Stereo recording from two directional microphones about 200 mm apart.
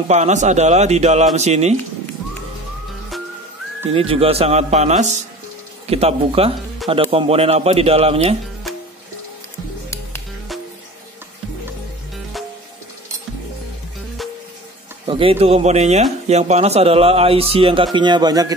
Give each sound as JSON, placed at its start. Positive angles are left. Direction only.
{"t": 0.1, "sound": "speech", "side_deg": -35}
{"t": 3.9, "sound": "speech", "side_deg": -30}
{"t": 8.6, "sound": "music", "side_deg": 0}
{"t": 15.0, "sound": "speech", "side_deg": -25}